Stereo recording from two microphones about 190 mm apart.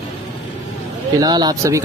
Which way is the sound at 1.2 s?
20° right (ahead or behind).